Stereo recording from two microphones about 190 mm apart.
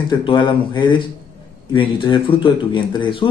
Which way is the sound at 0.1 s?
25° left (ahead or behind).